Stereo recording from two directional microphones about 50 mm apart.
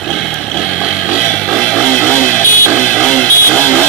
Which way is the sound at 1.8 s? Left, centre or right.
Centre.